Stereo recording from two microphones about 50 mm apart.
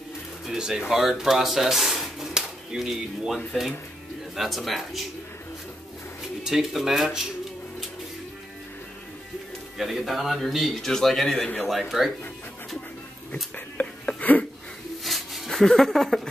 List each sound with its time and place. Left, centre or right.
0.5 s speech: centre
4.4 s speech: centre
6.4 s speech: centre
9.8 s speech: centre
13.3 s a sound: left
15.0 s a sound: centre
15.6 s speech: centre